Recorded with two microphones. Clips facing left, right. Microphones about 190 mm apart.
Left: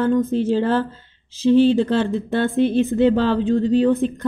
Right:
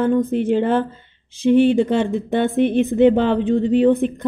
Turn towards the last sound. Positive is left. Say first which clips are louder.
# right 2 dB
turn(degrees=-20)  # may be behind; listen again after turning